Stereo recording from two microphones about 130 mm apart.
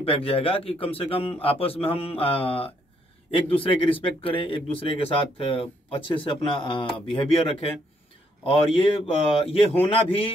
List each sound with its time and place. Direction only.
0.0 s speech: 45° left (ahead or behind)